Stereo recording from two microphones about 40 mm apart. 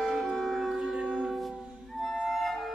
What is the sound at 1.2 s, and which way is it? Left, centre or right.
Music, centre.